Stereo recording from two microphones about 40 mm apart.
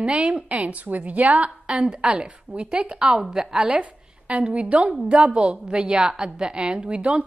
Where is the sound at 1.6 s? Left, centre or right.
Right.